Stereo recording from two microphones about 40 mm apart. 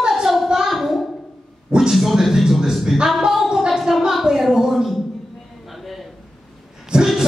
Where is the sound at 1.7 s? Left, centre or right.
Centre.